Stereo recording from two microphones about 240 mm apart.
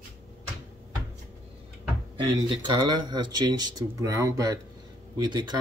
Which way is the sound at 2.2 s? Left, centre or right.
Centre.